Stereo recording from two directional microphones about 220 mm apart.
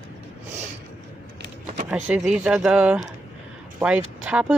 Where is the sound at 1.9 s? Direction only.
5° right (ahead or behind).